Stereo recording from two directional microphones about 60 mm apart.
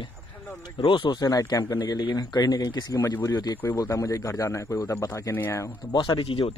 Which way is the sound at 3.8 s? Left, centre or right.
Left.